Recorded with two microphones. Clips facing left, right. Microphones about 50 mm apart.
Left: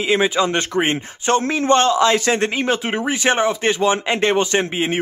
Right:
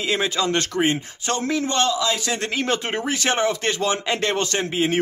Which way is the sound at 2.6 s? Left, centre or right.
Centre.